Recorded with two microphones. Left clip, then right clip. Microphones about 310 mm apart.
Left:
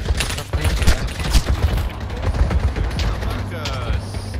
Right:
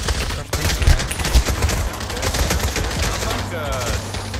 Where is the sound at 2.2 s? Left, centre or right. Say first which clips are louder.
Right 6 dB; right.